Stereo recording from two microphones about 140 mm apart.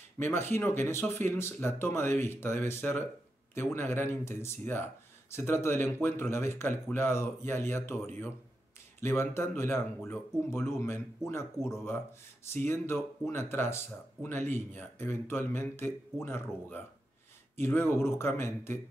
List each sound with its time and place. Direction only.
0.2 s speech: 15° left (ahead or behind)